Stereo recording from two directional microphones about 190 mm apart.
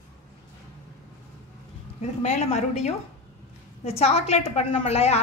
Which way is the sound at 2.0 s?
35° left (ahead or behind).